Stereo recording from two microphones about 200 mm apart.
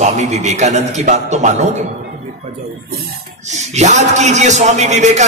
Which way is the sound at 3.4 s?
35° right (ahead or behind).